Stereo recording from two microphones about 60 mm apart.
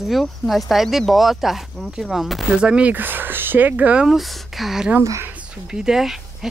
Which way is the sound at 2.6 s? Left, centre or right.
Centre.